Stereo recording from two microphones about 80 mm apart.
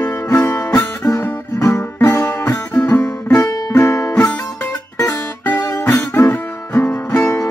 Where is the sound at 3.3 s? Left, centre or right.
Left.